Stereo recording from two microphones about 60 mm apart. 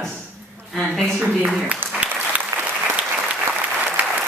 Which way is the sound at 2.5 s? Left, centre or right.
Right.